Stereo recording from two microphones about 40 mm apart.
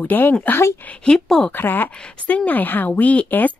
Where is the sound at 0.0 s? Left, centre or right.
Left.